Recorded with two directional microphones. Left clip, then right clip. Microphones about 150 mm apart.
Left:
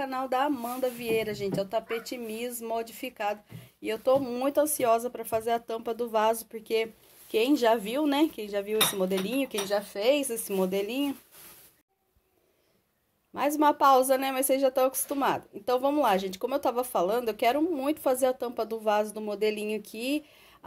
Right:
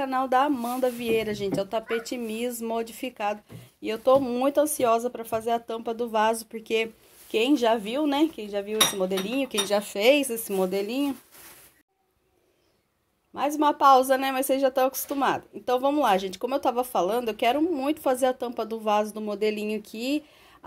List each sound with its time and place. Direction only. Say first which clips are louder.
0.0 s speech: right 5 dB; 10° right (ahead or behind); by 9.5 s 10° left (ahead or behind)
9.7 s speech: right 5 dB; 20° right (ahead or behind)
10.1 s speech: right 3 dB; centre (ahead or behind)
13.3 s speech: right 1 dB; 20° left (ahead or behind); by 20.2 s centre (ahead or behind)